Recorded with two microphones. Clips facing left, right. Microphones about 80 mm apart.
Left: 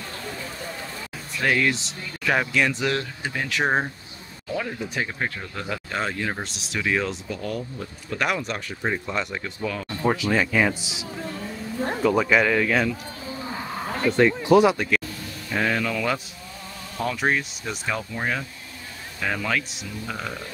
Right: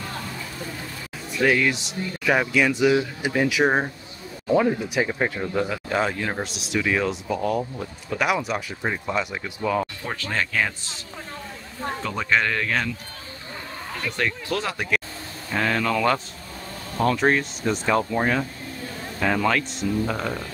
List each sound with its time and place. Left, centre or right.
1.4 s speech: centre
4.6 s speech: centre
10.0 s speech: centre
13.9 s speech: left
15.5 s speech: centre
19.2 s speech: centre